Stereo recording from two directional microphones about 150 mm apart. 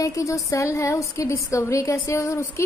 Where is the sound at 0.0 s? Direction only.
20° left (ahead or behind).